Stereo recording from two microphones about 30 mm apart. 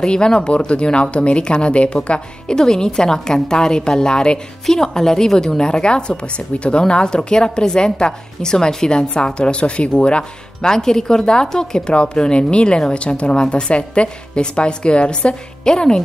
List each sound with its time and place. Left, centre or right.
0.0 s a woman's voice: left
2.5 s a woman's voice: left
4.6 s a woman's voice: centre
5.6 s a woman's voice: left
10.6 s a woman's voice: left
15.6 s a woman's voice: left